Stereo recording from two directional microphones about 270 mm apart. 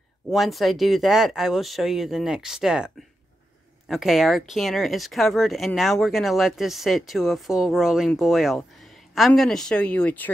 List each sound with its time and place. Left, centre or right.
0.3 s speech: centre
3.9 s speech: centre